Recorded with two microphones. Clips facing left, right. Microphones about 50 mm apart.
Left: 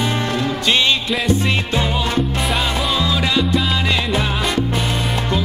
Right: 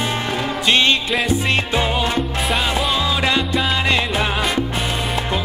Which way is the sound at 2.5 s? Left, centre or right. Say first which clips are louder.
Even; centre.